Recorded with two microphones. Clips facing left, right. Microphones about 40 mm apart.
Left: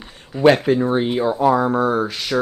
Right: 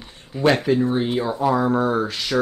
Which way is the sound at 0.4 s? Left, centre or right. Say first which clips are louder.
Left 4 dB; left.